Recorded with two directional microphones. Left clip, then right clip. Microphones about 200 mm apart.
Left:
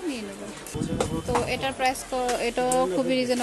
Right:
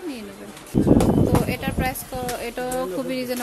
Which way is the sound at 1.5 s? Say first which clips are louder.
Left 1 dB; 5° left (ahead or behind).